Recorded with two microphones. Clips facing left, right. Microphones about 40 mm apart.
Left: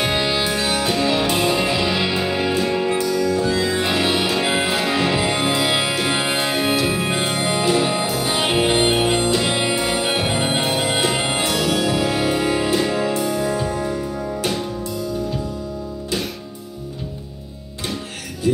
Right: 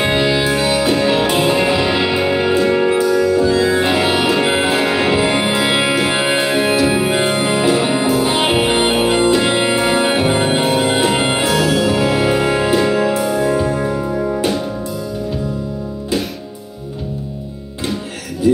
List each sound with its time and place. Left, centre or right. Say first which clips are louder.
0.0 s music: right 5 dB; right
3.5 s music: right 5 dB; right
11.0 s music: right 5 dB; centre
11.2 s music: right 5 dB; right